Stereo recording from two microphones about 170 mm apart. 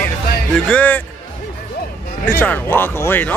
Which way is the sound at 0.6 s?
10° left (ahead or behind).